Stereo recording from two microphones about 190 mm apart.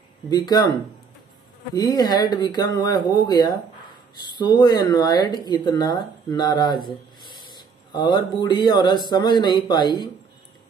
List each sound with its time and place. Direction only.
0.3 s speech: 20° left (ahead or behind)
1.8 s speech: 20° left (ahead or behind)